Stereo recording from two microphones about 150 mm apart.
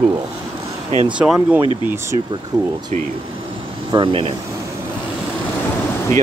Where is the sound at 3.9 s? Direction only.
35° right (ahead or behind).